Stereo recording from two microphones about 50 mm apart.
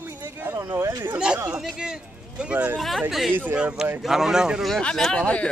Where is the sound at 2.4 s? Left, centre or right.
Right.